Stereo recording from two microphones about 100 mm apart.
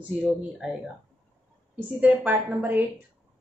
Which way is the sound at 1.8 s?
15° right (ahead or behind).